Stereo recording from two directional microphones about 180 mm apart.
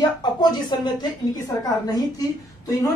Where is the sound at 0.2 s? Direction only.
25° left (ahead or behind).